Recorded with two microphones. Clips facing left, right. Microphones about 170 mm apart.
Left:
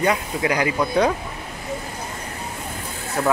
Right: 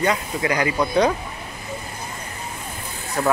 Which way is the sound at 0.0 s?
10° left (ahead or behind).